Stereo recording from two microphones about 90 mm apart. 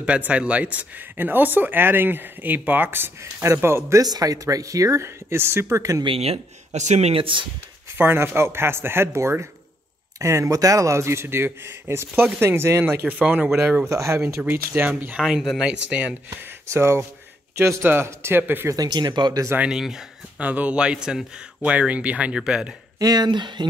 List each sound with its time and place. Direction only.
0.0 s speech: 15° right (ahead or behind)
4.0 s speech: 45° right (ahead or behind)
6.0 s speech: 90° right
7.2 s speech: 70° right (ahead or behind)
8.0 s speech: 25° right (ahead or behind)
13.0 s speech: 15° right (ahead or behind)
13.8 s speech: 35° right (ahead or behind)
14.4 s speech: 20° right (ahead or behind)
15.2 s speech: 5° right (ahead or behind)
16.6 s speech: 30° right (ahead or behind)
18.7 s speech: 50° right (ahead or behind)
19.7 s speech: 5° right (ahead or behind)
22.9 s speech: 45° right (ahead or behind)